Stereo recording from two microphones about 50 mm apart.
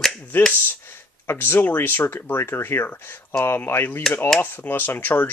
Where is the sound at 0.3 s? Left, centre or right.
Left.